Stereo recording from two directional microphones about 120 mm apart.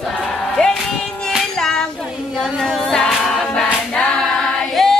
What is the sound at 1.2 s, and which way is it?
Music, 5° left (ahead or behind).